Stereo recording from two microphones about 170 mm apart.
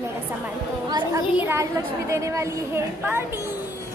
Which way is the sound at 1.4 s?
15° right (ahead or behind).